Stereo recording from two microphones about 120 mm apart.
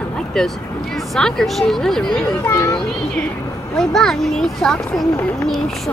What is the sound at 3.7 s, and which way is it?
Speech, 5° left (ahead or behind).